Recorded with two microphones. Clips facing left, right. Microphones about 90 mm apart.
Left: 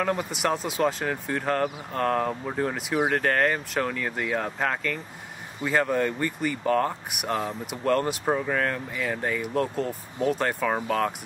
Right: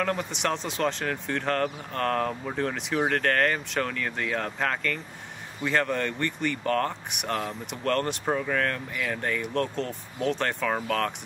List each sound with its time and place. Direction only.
0.0 s speech: 5° left (ahead or behind)